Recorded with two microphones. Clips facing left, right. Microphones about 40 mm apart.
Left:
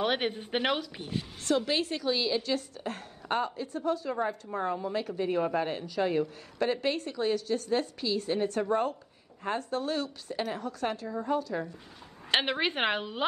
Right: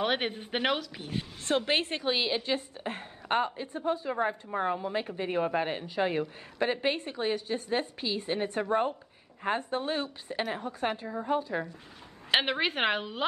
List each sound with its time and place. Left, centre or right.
0.0 s speech: centre
1.1 s a woman's voice: right
12.3 s a woman's voice: centre